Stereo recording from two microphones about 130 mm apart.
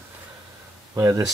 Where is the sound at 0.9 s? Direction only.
20° right (ahead or behind).